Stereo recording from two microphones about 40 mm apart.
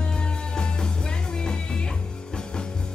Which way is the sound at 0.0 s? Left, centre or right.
Left.